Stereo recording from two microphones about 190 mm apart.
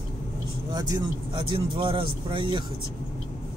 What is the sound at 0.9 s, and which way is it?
Speech, 25° right (ahead or behind).